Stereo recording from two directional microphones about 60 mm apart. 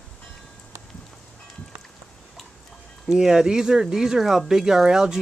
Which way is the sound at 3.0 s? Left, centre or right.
Centre.